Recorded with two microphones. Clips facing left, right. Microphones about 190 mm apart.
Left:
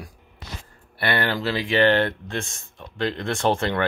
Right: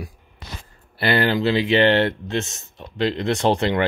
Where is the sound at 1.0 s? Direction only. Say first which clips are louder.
Right 5 dB; 25° right (ahead or behind).